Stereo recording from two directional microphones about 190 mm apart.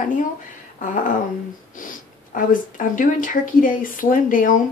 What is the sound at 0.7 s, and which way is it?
Speech, 45° left (ahead or behind).